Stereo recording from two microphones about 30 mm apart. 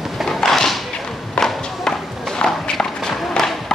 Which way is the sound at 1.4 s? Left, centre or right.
Left.